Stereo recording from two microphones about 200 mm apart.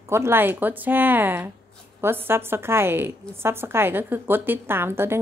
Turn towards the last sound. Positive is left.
turn(degrees=-10)  # may be behind; listen again after turning